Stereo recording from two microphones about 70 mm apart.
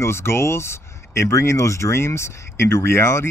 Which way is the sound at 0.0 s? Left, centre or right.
Left.